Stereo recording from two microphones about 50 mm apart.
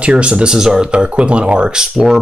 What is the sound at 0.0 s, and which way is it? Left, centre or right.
Speech, right.